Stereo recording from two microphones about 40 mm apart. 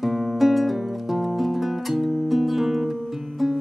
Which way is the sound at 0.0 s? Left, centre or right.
Centre.